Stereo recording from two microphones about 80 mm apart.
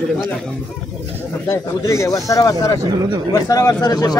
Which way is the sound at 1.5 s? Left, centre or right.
Left.